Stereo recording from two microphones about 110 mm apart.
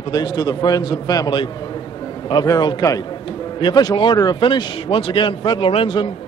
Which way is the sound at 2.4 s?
30° left (ahead or behind).